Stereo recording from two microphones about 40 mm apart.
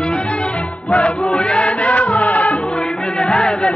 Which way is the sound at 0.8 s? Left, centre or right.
Left.